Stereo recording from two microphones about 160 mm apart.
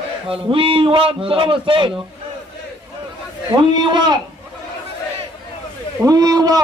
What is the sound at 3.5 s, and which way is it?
Speech, 30° right (ahead or behind).